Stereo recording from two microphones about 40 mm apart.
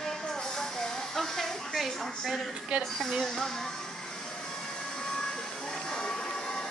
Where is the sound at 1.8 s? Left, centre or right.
Centre.